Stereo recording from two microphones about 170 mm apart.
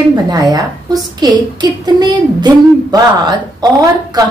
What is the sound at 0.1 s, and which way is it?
A woman's voice, 20° right (ahead or behind).